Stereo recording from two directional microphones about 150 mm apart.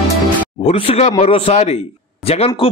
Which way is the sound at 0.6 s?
40° left (ahead or behind).